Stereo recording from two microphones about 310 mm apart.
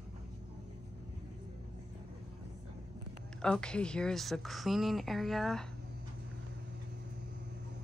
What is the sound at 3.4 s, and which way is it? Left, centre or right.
Speech, centre.